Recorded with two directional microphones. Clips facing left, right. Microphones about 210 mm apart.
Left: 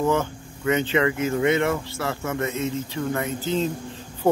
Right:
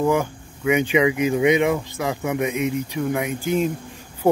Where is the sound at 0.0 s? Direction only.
10° right (ahead or behind).